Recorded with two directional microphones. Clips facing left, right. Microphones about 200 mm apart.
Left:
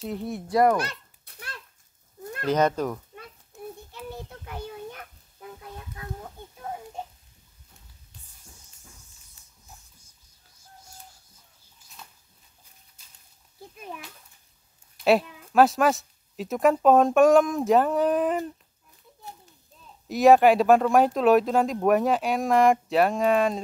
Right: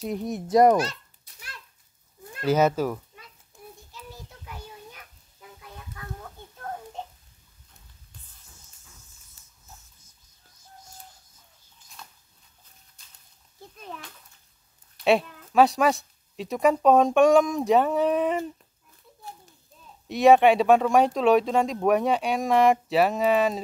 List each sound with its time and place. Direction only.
0.0 s a child's voice: 15° right (ahead or behind)
0.8 s a sound: 55° left (ahead or behind)
2.4 s speech: 5° right (ahead or behind)
3.9 s child singing: 55° left (ahead or behind)
6.6 s child singing: 10° left (ahead or behind)
13.6 s a sound: 10° left (ahead or behind)
15.0 s a woman's voice: centre (ahead or behind)
20.1 s a woman's voice: centre (ahead or behind)